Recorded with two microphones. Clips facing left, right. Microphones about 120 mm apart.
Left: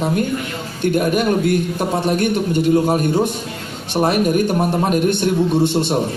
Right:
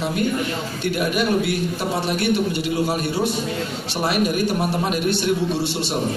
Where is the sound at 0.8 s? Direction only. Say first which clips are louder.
Left 6 dB; 45° left (ahead or behind).